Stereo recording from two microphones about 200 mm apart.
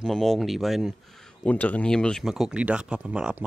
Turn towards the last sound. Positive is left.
turn(degrees=-5)  # may be behind; listen again after turning